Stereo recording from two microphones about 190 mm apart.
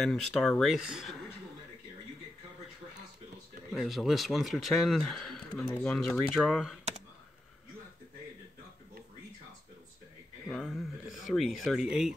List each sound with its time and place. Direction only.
0.0 s speech: 5° left (ahead or behind)
3.7 s speech: centre (ahead or behind)
10.5 s speech: centre (ahead or behind)